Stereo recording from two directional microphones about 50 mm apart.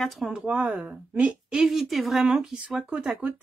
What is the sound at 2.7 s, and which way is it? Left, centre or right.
Speech, centre.